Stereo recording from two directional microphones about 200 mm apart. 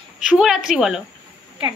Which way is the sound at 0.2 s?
5° right (ahead or behind).